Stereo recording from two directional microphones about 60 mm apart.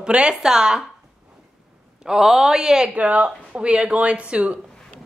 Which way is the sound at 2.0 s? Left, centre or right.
Centre.